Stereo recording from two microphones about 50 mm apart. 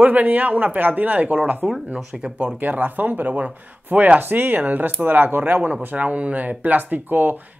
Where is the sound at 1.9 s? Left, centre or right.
Centre.